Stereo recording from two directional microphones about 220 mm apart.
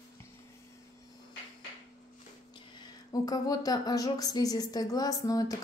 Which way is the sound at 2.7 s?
20° left (ahead or behind).